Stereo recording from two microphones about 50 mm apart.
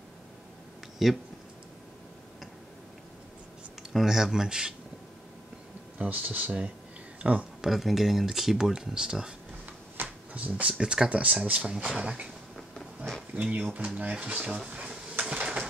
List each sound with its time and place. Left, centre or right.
1.0 s speech: centre
4.0 s speech: centre
5.9 s speech: right
7.6 s speech: centre
10.0 s a sound: right
10.8 s speech: centre
11.1 s speech: right
11.7 s speech: centre
12.5 s a sound: centre
13.3 s speech: right
14.4 s speech: centre
14.7 s dishes: right